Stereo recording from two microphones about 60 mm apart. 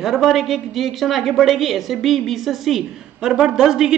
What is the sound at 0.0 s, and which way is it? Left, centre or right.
A woman's voice, centre.